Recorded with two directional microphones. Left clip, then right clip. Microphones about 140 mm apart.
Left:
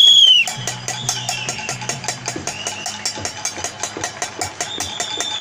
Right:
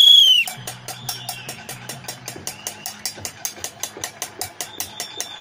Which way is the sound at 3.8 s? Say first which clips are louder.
Left 6 dB; 15° left (ahead or behind).